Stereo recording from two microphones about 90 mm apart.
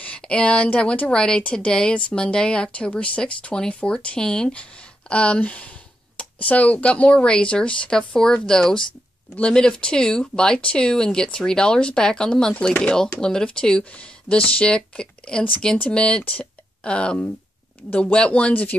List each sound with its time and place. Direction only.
0.0 s a woman's voice: 15° left (ahead or behind)